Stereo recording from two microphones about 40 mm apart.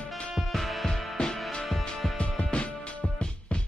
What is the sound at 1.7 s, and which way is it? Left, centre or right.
Music, centre.